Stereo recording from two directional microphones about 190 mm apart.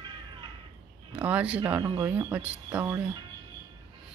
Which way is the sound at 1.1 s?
5° right (ahead or behind).